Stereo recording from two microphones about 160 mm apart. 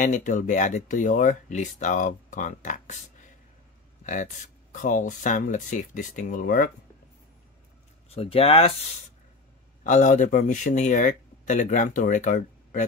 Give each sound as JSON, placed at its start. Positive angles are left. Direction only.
{"t": 0.0, "sound": "speech", "side_deg": 50}
{"t": 4.0, "sound": "speech", "side_deg": 55}
{"t": 8.1, "sound": "speech", "side_deg": 35}
{"t": 9.8, "sound": "speech", "side_deg": 50}